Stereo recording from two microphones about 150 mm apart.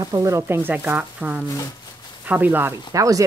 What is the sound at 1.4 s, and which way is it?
Speech, 20° left (ahead or behind).